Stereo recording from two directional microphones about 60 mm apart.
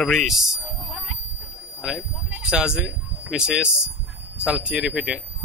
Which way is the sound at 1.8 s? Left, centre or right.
Centre.